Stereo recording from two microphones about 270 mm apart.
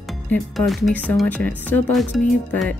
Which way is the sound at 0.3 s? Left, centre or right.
Centre.